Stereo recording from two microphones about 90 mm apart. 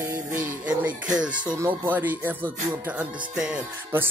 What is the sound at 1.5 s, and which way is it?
Speech, 20° right (ahead or behind).